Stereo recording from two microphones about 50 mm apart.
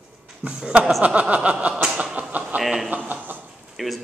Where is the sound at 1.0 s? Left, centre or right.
Right.